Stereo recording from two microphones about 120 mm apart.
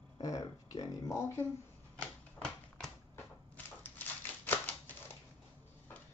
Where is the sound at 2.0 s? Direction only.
5° left (ahead or behind).